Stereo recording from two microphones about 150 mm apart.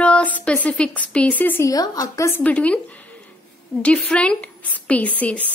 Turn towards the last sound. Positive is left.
turn(degrees=10)  # may be behind; listen again after turning